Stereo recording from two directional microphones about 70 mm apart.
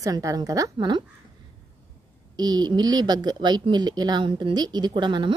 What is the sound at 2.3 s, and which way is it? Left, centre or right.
Speech, right.